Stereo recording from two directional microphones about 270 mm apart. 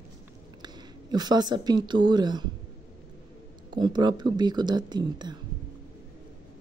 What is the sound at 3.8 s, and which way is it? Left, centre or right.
Speech, centre.